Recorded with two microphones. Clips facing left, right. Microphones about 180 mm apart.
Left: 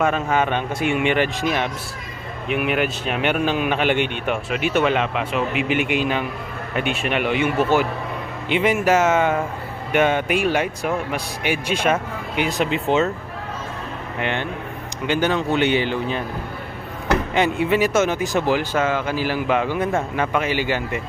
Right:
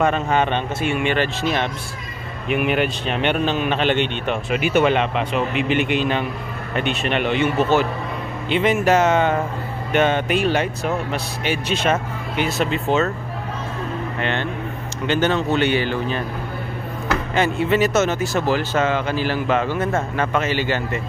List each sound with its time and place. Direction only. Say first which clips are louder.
0.0 s speech: right 1 dB; 5° left (ahead or behind)
4.5 s speech: right 3 dB; centre (ahead or behind); by 13.1 s 15° left (ahead or behind)
14.2 s speech: left 1 dB; 15° left (ahead or behind)
17.3 s speech: right 2 dB; 15° left (ahead or behind)